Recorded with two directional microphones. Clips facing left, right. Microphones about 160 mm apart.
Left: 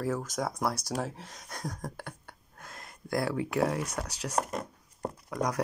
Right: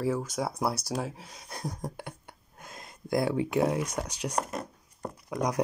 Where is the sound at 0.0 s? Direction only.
5° right (ahead or behind).